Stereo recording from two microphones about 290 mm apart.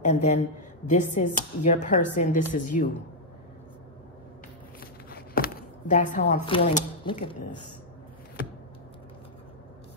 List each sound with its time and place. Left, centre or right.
0.0 s speech: left
5.1 s speech: left